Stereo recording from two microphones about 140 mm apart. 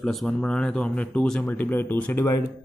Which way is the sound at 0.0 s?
5° left (ahead or behind).